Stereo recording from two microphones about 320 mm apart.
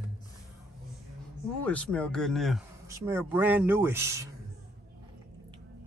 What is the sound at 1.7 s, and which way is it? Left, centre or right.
Speech, centre.